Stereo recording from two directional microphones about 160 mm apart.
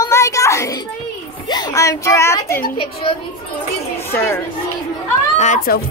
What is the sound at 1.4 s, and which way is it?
Speech, 25° left (ahead or behind).